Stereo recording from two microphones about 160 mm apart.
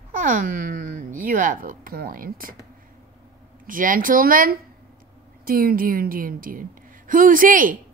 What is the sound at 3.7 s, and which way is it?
Speech, 60° right (ahead or behind).